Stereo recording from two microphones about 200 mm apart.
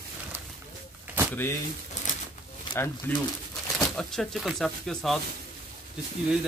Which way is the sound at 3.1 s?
10° left (ahead or behind).